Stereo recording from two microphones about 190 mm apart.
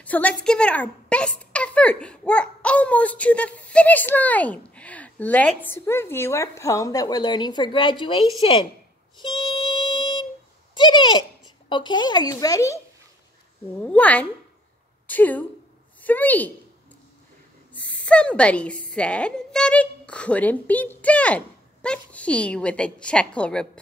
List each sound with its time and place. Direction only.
0.0 s a woman's voice: 10° left (ahead or behind); by 8.6 s 25° left (ahead or behind)
9.2 s music: 25° left (ahead or behind)
10.7 s speech: 25° left (ahead or behind)
13.8 s a woman's voice: 5° left (ahead or behind)
17.7 s speech: 5° left (ahead or behind)